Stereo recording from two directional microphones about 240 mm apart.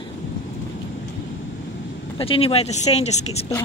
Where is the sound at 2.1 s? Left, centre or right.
Left.